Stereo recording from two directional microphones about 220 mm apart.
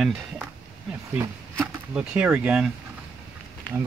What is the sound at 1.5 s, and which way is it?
Speech, 5° right (ahead or behind).